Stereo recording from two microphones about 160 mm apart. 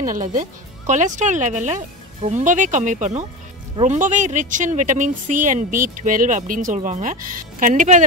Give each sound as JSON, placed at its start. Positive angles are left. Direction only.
{"t": 0.0, "sound": "speech", "side_deg": -55}